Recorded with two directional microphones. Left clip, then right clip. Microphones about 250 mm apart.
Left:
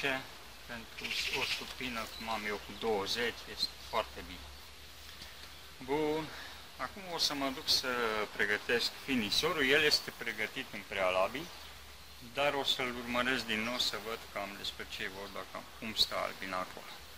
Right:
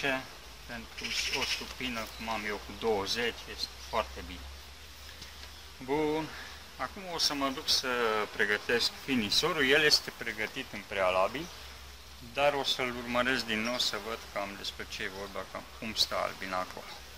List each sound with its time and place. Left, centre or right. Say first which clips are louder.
1.3 s speech: right 2 dB; centre
5.9 s speech: right 3 dB; centre; by 16.6 s right